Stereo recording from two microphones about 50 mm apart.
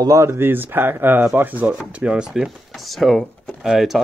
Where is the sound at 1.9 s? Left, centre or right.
Centre.